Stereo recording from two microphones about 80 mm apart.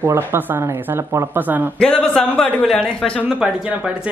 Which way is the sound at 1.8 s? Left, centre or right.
Centre.